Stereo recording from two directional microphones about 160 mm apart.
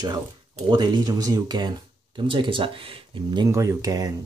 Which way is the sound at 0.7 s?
25° right (ahead or behind).